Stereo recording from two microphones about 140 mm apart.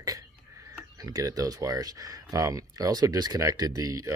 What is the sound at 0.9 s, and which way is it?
Speech, 25° right (ahead or behind).